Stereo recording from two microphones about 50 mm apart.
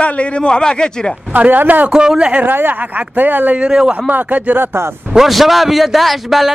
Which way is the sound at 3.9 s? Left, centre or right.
Right.